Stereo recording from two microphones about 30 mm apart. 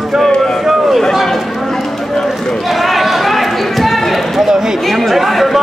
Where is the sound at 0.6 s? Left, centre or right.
Centre.